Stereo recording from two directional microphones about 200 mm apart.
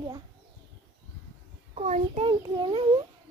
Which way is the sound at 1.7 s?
35° right (ahead or behind).